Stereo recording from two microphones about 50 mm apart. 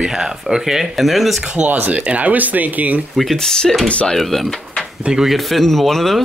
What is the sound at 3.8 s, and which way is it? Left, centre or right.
Speech, left.